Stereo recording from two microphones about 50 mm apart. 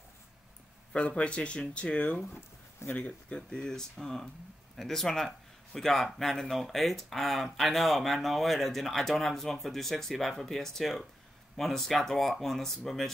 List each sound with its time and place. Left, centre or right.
0.9 s speech: left
3.1 s speech: centre